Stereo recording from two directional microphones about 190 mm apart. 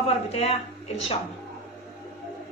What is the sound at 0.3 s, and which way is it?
Speech, 35° left (ahead or behind).